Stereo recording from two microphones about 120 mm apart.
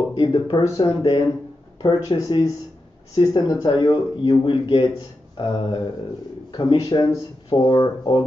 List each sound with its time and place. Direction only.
0.1 s speech: 45° left (ahead or behind)
6.5 s speech: 35° left (ahead or behind)